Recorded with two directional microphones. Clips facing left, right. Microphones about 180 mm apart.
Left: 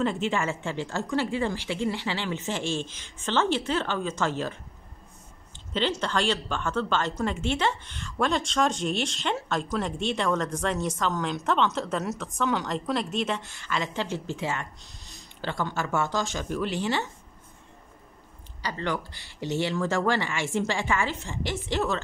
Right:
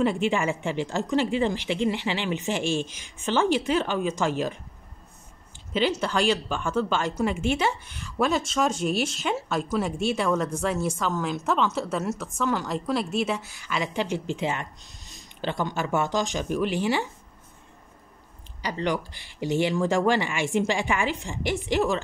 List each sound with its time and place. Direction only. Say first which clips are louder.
0.0 s speech: right 3 dB; 15° right (ahead or behind)
5.7 s speech: right 3 dB; 10° right (ahead or behind)
18.6 s speech: right 3 dB; 15° right (ahead or behind)